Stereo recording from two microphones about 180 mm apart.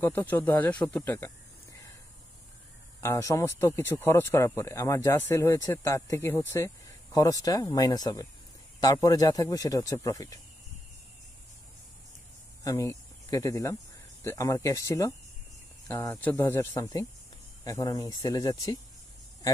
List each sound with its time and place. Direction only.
0.0 s speech: 10° left (ahead or behind)
3.0 s speech: 15° left (ahead or behind)
12.6 s speech: 20° left (ahead or behind)